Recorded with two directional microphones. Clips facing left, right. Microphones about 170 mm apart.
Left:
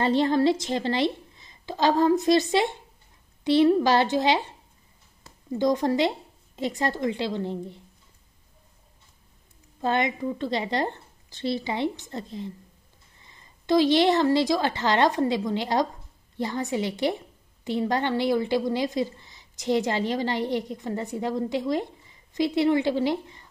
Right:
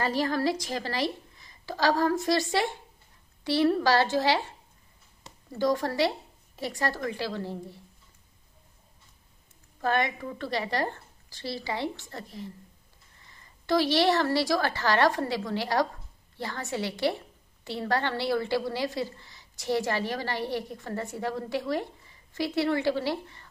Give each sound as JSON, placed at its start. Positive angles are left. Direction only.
{"t": 0.0, "sound": "a woman's voice", "side_deg": 25}
{"t": 9.8, "sound": "a woman's voice", "side_deg": 20}